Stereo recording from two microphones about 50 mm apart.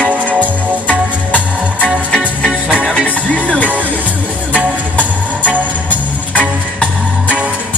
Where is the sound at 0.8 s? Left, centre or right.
Left.